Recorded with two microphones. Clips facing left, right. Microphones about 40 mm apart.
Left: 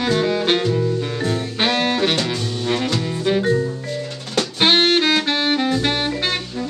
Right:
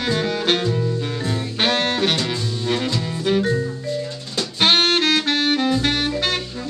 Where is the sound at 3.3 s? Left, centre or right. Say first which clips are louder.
Left 1 dB; centre.